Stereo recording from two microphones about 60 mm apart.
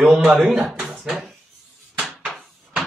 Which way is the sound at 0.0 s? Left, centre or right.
Centre.